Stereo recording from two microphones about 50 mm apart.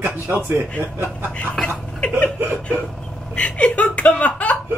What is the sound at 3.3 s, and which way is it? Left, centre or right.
Speech, left.